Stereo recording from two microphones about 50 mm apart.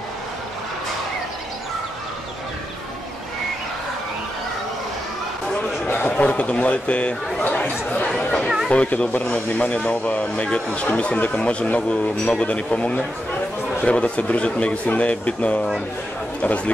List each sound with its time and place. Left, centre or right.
5.9 s a sound: left
6.1 s speech: left
8.2 s chatter: left
8.6 s speech: left